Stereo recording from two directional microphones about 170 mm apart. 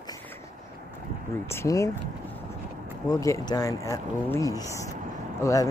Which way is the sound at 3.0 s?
20° left (ahead or behind).